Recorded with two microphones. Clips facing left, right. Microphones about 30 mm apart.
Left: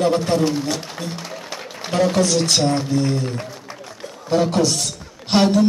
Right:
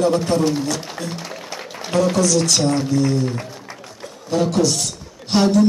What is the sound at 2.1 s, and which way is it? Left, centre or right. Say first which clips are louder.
A man's voice: even; left.